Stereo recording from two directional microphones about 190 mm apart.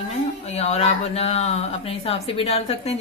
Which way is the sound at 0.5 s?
35° left (ahead or behind).